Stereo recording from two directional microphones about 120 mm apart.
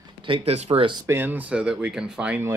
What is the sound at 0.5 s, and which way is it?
Speech, 60° right (ahead or behind).